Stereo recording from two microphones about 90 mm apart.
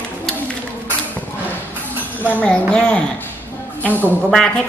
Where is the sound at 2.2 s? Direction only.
15° left (ahead or behind).